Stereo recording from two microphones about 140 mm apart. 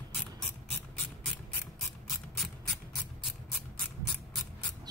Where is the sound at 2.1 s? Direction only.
Centre (ahead or behind).